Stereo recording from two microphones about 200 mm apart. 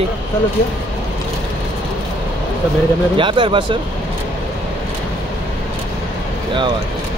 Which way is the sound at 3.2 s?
25° right (ahead or behind).